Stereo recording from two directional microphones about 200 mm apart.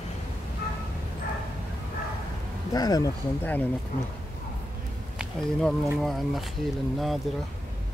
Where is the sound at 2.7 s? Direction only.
20° left (ahead or behind).